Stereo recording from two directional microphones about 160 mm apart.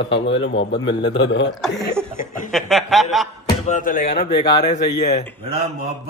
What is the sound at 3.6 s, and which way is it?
Speech, 50° left (ahead or behind).